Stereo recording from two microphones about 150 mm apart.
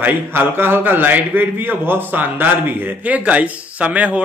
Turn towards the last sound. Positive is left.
turn(degrees=-10)  # may be behind; listen again after turning